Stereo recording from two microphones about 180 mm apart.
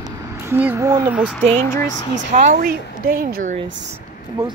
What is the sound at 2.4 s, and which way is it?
Speech, 50° right (ahead or behind).